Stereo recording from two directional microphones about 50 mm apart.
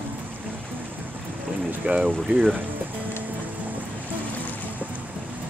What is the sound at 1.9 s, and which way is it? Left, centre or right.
Speech, right.